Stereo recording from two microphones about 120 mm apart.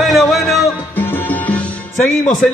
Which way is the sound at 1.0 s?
15° left (ahead or behind).